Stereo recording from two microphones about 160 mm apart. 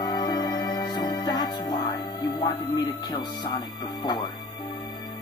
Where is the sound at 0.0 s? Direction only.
25° left (ahead or behind).